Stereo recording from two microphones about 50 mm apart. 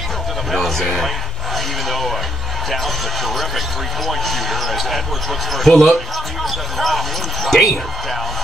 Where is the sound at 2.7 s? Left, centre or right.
Centre.